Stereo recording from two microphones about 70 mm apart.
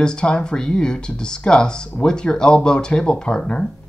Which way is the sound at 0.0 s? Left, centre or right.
Centre.